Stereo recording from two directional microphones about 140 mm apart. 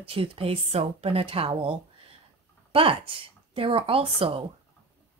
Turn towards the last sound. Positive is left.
turn(degrees=-40)  # may be behind; listen again after turning